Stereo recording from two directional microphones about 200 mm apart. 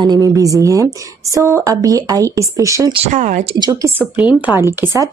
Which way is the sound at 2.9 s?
35° right (ahead or behind).